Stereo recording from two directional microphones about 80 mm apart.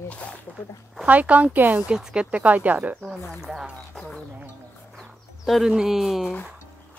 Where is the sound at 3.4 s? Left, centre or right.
Centre.